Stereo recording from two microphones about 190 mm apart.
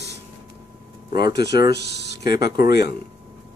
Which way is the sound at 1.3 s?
60° left (ahead or behind).